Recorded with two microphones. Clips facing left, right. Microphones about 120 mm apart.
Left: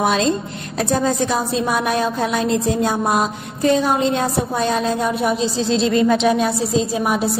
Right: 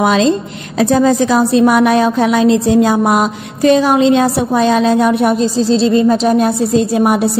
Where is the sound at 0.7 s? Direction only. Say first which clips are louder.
Right 8 dB; 90° right.